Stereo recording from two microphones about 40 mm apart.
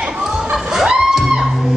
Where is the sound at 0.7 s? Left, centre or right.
Centre.